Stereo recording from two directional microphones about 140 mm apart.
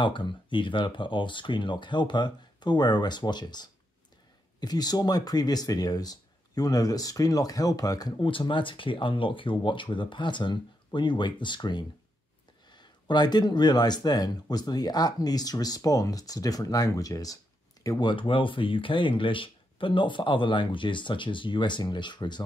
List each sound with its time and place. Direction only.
0.0 s speech: 35° left (ahead or behind)